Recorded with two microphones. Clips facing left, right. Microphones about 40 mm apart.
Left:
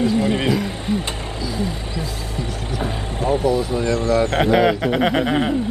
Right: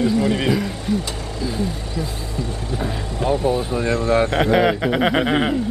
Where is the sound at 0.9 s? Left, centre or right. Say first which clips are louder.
Right 1 dB; left.